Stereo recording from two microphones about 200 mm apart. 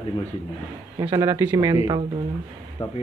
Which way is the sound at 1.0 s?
15° right (ahead or behind).